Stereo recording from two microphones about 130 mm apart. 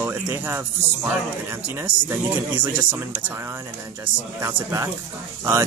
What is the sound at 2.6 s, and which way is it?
Speech, 15° right (ahead or behind).